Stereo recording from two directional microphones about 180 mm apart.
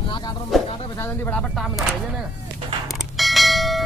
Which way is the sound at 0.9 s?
10° left (ahead or behind).